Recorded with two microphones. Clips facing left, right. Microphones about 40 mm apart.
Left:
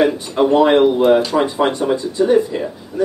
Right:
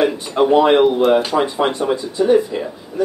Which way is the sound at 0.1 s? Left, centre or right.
Centre.